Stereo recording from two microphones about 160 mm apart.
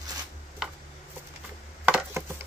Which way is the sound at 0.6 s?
Centre (ahead or behind).